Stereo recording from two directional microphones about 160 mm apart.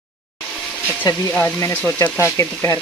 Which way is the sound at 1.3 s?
15° left (ahead or behind).